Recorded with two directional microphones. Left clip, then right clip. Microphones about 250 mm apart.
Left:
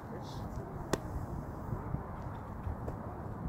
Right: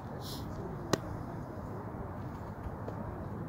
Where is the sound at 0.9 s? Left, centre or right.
Centre.